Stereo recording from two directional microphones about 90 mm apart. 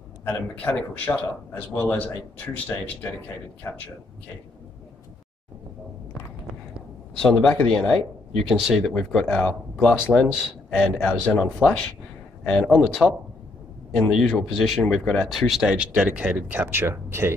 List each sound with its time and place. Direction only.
0.2 s speech: 20° left (ahead or behind)
7.2 s speech: 10° left (ahead or behind)
8.5 s speech: 5° right (ahead or behind); by 17.4 s 25° right (ahead or behind)